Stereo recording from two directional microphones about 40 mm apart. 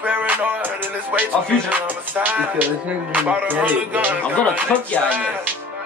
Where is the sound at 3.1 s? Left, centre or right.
Right.